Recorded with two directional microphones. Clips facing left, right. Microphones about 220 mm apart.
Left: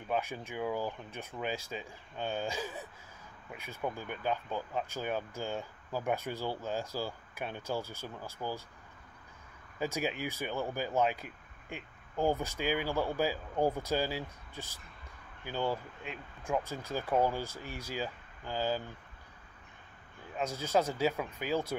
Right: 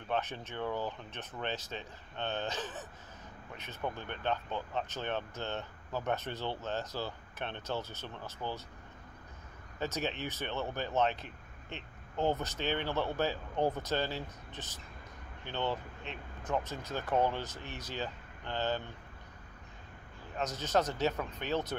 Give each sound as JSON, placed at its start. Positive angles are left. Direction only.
{"t": 0.1, "sound": "speech", "side_deg": 10}
{"t": 9.8, "sound": "speech", "side_deg": 10}
{"t": 20.3, "sound": "speech", "side_deg": 10}